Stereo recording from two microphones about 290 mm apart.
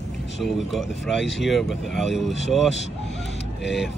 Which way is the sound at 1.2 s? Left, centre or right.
Left.